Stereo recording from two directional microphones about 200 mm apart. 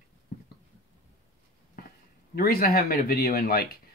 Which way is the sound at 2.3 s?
50° left (ahead or behind).